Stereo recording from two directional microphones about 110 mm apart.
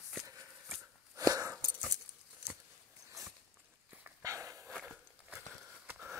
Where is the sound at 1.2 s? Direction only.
30° right (ahead or behind).